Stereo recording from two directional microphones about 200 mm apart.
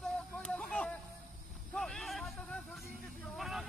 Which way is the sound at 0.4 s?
5° left (ahead or behind).